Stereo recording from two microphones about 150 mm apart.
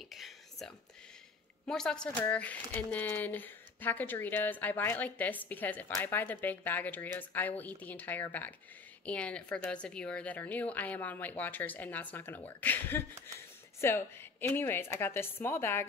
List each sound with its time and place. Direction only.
0.1 s whispering: centre (ahead or behind)
1.7 s speech: 5° left (ahead or behind)